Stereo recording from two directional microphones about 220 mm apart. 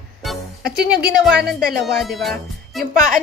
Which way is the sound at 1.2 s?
5° right (ahead or behind).